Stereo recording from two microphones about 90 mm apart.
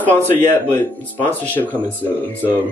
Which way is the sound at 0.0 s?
20° left (ahead or behind).